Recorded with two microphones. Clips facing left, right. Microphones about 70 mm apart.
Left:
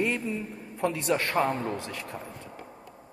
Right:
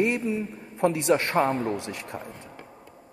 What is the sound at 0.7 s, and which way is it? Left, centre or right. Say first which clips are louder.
Speech: right 5 dB; right.